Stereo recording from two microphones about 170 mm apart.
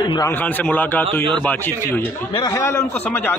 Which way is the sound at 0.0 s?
25° left (ahead or behind).